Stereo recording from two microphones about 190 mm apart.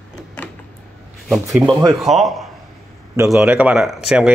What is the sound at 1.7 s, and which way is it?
Speech, 15° right (ahead or behind).